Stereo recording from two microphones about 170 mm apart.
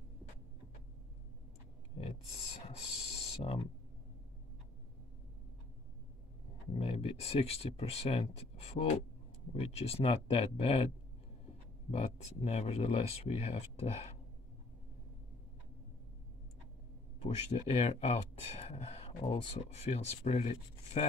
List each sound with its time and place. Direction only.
2.9 s a sound: 35° left (ahead or behind)
6.7 s speech: 35° left (ahead or behind)
11.9 s speech: 40° left (ahead or behind)
17.2 s speech: 40° left (ahead or behind)